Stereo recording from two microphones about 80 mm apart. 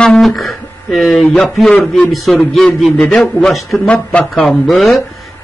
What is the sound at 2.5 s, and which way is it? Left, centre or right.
A man's voice, centre.